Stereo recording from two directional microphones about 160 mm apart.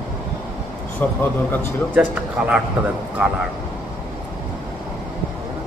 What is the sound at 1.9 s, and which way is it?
Speech, 5° right (ahead or behind).